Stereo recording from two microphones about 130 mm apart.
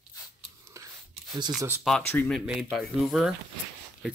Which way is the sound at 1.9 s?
Centre (ahead or behind).